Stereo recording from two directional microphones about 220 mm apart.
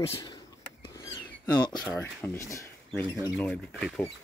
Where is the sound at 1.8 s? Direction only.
10° left (ahead or behind).